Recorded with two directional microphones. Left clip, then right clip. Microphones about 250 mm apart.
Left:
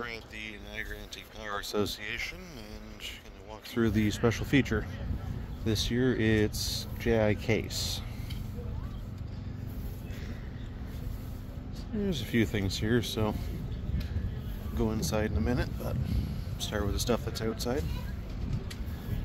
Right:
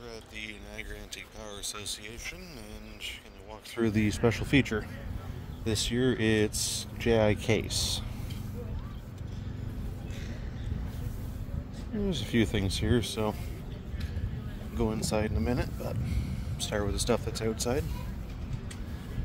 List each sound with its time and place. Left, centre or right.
0.0 s speech: centre
3.7 s speech: centre
12.0 s speech: centre
14.8 s speech: centre